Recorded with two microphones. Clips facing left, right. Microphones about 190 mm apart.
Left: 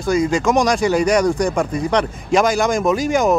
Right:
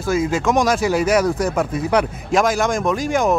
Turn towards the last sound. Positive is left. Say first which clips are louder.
# left 2 dB
turn(degrees=0)  # may be behind; listen again after turning